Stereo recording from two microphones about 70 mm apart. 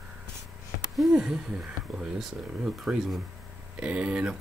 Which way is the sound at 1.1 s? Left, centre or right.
Centre.